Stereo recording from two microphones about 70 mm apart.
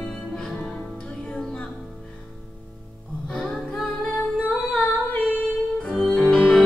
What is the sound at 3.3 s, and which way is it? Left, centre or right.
Music, centre.